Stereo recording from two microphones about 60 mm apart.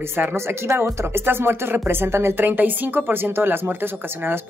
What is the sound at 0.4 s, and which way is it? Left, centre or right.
Speech, right.